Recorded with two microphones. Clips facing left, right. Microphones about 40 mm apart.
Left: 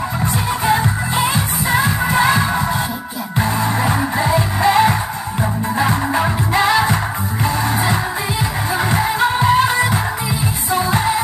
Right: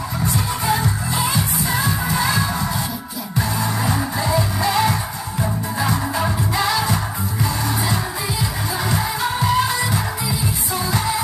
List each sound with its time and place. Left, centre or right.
0.2 s music: left